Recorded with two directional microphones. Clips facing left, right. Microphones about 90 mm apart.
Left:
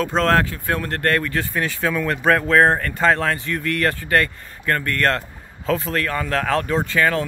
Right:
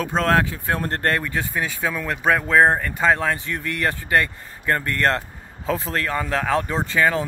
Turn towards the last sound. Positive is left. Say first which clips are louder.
# left 1 dB
turn(degrees=-20)  # may be behind; listen again after turning